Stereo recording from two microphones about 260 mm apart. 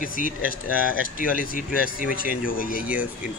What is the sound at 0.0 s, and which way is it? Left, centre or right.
Speech, left.